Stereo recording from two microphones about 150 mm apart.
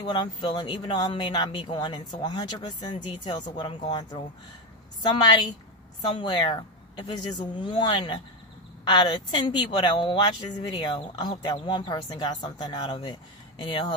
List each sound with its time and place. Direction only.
0.0 s speech: 30° left (ahead or behind)